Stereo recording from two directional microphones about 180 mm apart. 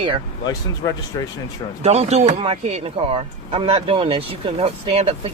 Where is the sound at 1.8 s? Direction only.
35° right (ahead or behind).